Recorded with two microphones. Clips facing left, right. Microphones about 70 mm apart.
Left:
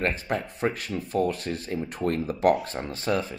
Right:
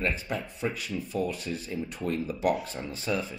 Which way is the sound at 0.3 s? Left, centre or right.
Left.